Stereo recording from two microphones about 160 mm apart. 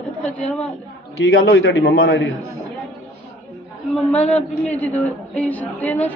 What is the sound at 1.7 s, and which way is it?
Speech, 85° left.